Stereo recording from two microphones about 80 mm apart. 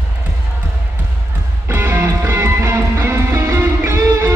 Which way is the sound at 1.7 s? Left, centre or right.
Right.